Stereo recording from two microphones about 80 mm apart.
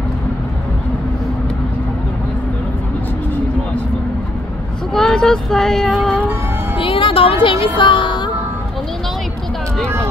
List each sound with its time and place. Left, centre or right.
4.9 s child singing: centre
6.8 s music: left